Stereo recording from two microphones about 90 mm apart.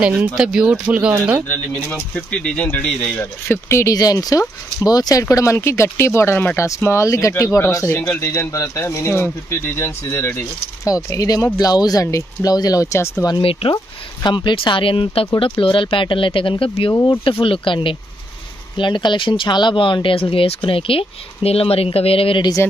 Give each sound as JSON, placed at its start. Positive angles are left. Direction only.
{"t": 0.3, "sound": "speech", "side_deg": -10}
{"t": 2.1, "sound": "speech", "side_deg": 10}
{"t": 3.6, "sound": "speech", "side_deg": 30}
{"t": 3.9, "sound": "speech", "side_deg": 45}
{"t": 5.3, "sound": "speech", "side_deg": 35}
{"t": 13.4, "sound": "speech", "side_deg": 90}
{"t": 14.2, "sound": "speech", "side_deg": 60}
{"t": 18.8, "sound": "speech", "side_deg": 60}
{"t": 22.6, "sound": "speech", "side_deg": 25}